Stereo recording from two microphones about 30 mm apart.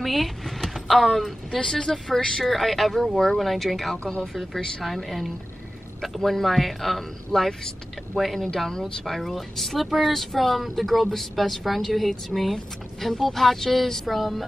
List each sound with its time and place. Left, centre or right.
0.0 s speech: centre
1.6 s speech: centre
4.8 s speech: centre